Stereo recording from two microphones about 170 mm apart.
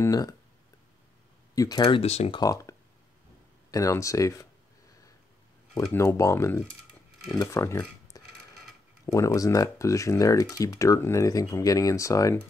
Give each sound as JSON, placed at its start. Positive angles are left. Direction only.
{"t": 0.0, "sound": "speech", "side_deg": 20}
{"t": 1.5, "sound": "speech", "side_deg": 20}
{"t": 2.4, "sound": "speech", "side_deg": 20}
{"t": 3.7, "sound": "speech", "side_deg": 20}
{"t": 5.9, "sound": "speech", "side_deg": 15}